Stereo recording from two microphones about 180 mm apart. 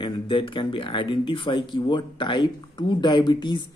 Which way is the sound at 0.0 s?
25° left (ahead or behind).